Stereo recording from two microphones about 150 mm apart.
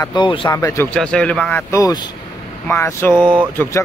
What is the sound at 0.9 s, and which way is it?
Speech, 5° left (ahead or behind).